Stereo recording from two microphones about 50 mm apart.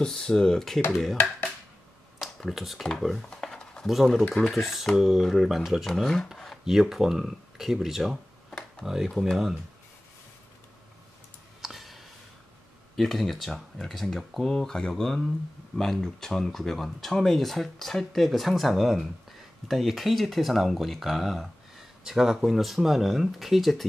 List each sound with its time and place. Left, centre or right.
0.0 s speech: centre
2.1 s computer keyboard: centre
3.2 s a sound: centre
3.8 s speech: centre
5.9 s speech: centre
6.3 s a sound: centre
6.6 s speech: centre
8.5 s a sound: left
8.8 s speech: centre
11.6 s clicking: centre
12.9 s speech: centre